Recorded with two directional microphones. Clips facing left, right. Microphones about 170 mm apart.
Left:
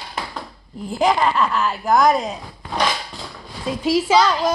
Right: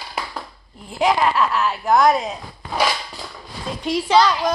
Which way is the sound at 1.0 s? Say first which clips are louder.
Even; centre (ahead or behind).